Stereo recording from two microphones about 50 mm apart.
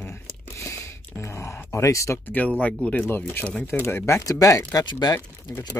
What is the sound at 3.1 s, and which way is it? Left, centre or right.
Speech, left.